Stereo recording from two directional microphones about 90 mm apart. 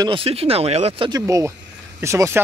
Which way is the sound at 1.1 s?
40° right (ahead or behind).